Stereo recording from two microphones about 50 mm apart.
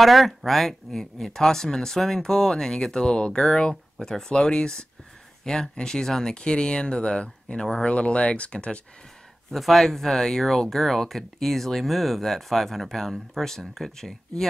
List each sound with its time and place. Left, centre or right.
0.0 s speech: centre
7.8 s speech: left
9.5 s speech: centre